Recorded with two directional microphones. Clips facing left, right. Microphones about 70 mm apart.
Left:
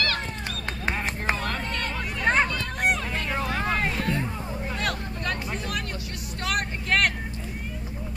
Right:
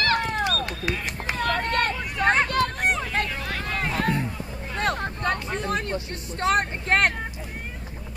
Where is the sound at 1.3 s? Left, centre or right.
Right.